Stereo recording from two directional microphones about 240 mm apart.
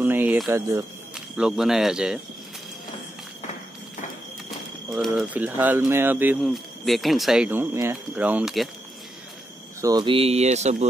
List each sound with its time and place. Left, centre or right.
0.0 s speech: centre
4.9 s speech: centre
9.8 s speech: centre